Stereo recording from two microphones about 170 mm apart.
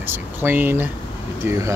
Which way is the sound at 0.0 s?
10° right (ahead or behind).